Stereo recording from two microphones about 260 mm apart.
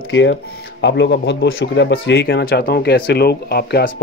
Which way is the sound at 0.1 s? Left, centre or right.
Left.